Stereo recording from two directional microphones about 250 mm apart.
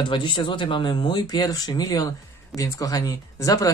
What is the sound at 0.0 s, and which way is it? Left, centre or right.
Speech, centre.